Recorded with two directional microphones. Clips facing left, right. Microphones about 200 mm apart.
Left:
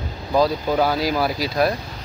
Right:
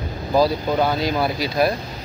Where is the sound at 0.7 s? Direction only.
5° left (ahead or behind).